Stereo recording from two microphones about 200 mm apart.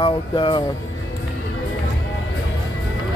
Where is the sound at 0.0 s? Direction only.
25° left (ahead or behind).